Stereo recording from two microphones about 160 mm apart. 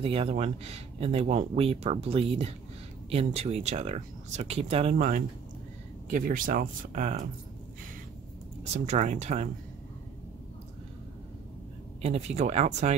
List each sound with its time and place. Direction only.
0.0 s speech: 35° right (ahead or behind); by 7.2 s 50° right (ahead or behind)
8.6 s speech: 45° right (ahead or behind)
12.0 s speech: 40° right (ahead or behind)